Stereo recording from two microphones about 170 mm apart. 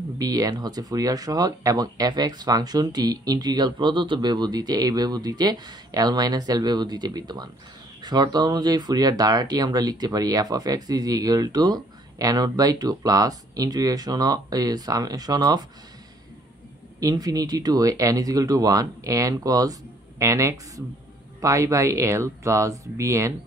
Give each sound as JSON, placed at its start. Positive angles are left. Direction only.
{"t": 0.2, "sound": "speech", "side_deg": -20}
{"t": 17.0, "sound": "speech", "side_deg": -20}